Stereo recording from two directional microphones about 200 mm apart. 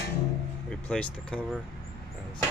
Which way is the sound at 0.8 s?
5° left (ahead or behind).